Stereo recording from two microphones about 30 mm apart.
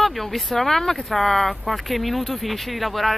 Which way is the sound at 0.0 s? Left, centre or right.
Centre.